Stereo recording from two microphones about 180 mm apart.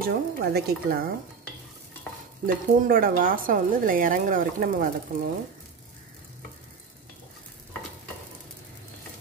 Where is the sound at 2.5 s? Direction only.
50° right (ahead or behind).